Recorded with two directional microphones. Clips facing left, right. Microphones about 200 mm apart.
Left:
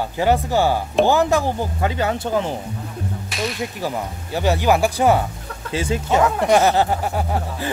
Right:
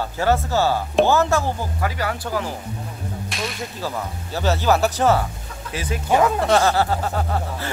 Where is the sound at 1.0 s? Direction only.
15° left (ahead or behind).